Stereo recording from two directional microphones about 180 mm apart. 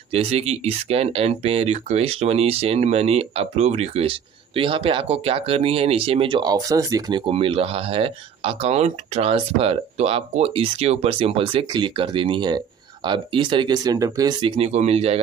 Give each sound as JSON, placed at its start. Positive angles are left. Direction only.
{"t": 0.1, "sound": "speech", "side_deg": -35}
{"t": 14.6, "sound": "speech", "side_deg": -35}